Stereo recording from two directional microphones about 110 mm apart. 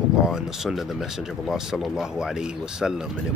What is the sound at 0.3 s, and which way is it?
Speech, 5° right (ahead or behind).